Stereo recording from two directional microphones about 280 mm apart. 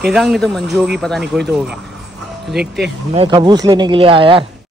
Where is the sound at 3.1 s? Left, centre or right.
Centre.